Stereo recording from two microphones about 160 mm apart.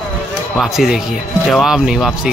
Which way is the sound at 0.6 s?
Centre (ahead or behind).